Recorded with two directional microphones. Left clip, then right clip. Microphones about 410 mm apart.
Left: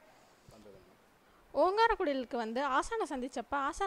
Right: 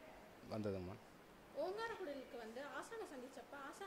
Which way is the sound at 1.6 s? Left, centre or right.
Left.